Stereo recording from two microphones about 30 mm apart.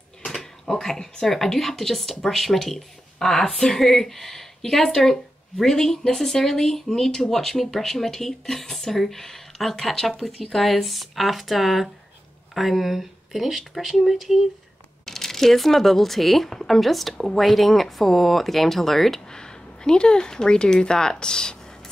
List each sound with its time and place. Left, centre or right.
0.3 s a sound: centre
1.2 s speech: centre
3.2 s speech: centre
15.0 s speech: centre
19.3 s speech: left